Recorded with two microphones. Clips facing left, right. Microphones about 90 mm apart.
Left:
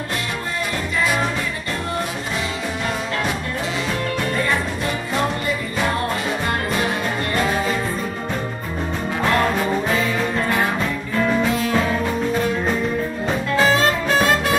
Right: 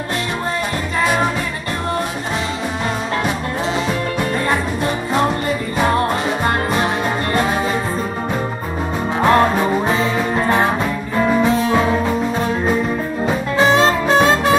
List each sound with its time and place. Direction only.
6.4 s music: 30° right (ahead or behind)
9.2 s music: 30° right (ahead or behind)
13.6 s music: 25° right (ahead or behind)